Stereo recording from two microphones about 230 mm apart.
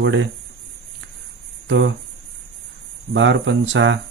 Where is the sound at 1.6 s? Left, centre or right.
Right.